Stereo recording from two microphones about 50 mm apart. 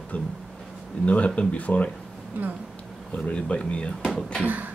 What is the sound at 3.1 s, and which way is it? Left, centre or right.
Speech, left.